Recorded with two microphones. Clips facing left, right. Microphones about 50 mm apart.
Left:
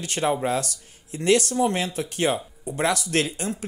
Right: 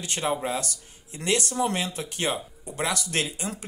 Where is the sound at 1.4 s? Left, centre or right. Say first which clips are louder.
Left 3 dB; right.